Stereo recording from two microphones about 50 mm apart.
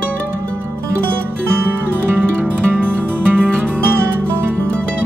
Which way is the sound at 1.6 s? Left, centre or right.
Right.